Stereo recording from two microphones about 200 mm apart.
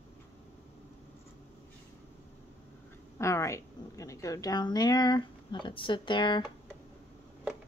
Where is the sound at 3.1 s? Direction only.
15° left (ahead or behind).